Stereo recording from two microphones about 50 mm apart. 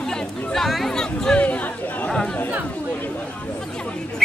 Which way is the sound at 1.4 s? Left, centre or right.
Left.